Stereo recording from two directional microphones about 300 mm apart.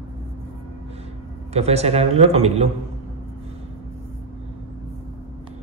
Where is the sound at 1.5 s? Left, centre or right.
Right.